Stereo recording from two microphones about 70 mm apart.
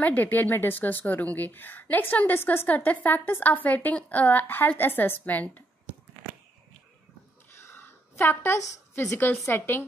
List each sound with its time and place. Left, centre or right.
0.0 s a woman's voice: left
7.5 s a sound: left
9.5 s speech: left